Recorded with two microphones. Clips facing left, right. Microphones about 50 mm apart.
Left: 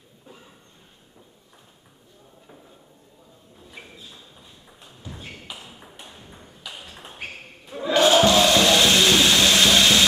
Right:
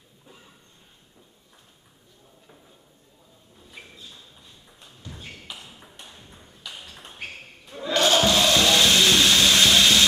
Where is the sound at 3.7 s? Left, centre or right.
Centre.